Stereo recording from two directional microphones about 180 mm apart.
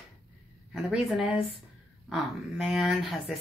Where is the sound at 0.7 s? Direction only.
Centre (ahead or behind).